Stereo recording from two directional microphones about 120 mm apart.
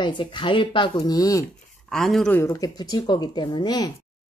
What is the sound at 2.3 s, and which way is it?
Speech, 25° left (ahead or behind).